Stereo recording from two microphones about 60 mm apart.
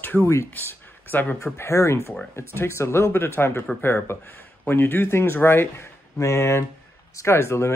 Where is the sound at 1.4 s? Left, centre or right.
Left.